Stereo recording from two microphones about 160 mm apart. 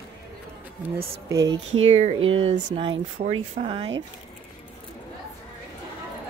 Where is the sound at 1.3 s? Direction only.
25° right (ahead or behind).